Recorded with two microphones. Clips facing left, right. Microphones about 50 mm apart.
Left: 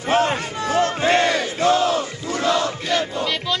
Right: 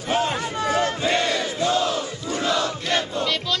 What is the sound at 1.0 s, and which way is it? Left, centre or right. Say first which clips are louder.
Battle cry: left 4 dB; left.